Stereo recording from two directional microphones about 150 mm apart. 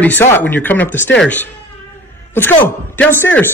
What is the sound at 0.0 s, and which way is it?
Speech, 10° left (ahead or behind).